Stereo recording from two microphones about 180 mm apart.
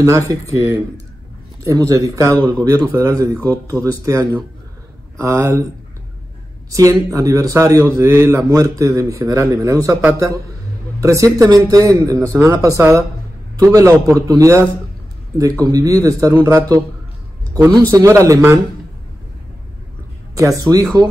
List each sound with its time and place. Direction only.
0.0 s a man's voice: 15° right (ahead or behind)
6.7 s a man's voice: 20° right (ahead or behind)
18.2 s a man's voice: 15° right (ahead or behind)
20.3 s speech: 20° right (ahead or behind)